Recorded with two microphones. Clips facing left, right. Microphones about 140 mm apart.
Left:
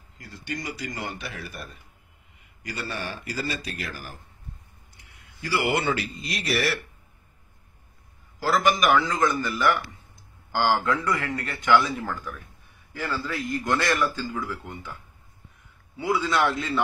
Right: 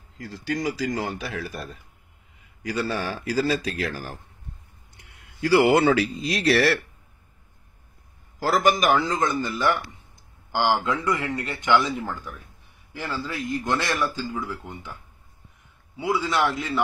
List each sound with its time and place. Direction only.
0.5 s speech: 90° right
2.9 s speech: 90° right
4.9 s a sound: 75° right (ahead or behind)
5.9 s speech: 90° right
8.4 s a man's voice: 45° right (ahead or behind)
8.7 s a man's voice: 30° right (ahead or behind)
16.0 s a man's voice: 15° right (ahead or behind)